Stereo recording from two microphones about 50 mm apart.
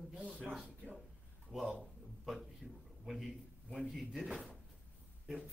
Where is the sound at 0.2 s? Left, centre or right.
Right.